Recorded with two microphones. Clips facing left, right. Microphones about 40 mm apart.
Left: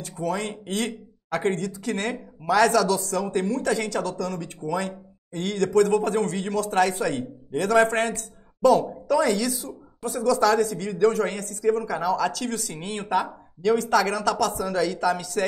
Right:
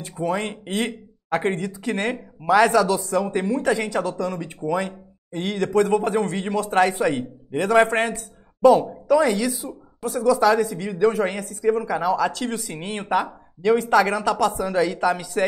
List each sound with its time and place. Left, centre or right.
0.0 s speech: right